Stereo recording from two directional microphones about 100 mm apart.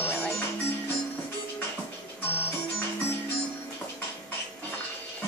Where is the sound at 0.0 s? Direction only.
20° left (ahead or behind).